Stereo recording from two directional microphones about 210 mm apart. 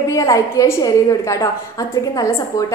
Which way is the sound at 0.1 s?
15° left (ahead or behind).